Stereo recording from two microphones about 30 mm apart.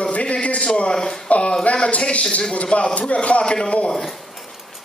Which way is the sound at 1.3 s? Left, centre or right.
Left.